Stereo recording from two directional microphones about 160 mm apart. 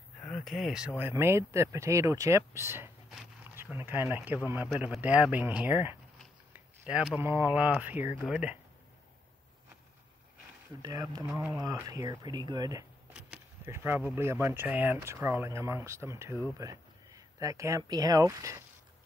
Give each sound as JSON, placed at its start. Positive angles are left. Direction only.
{"t": 0.2, "sound": "speech", "side_deg": 0}
{"t": 6.5, "sound": "a sound", "side_deg": -5}
{"t": 7.2, "sound": "speech", "side_deg": -15}
{"t": 10.8, "sound": "speech", "side_deg": -25}
{"t": 13.7, "sound": "speech", "side_deg": -15}